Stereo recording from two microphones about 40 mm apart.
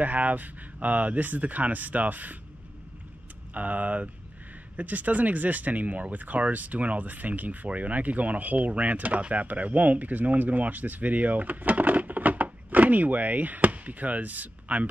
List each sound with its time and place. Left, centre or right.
0.0 s speech: right
3.5 s speech: right